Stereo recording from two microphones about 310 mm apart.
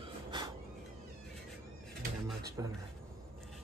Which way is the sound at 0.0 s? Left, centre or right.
Centre.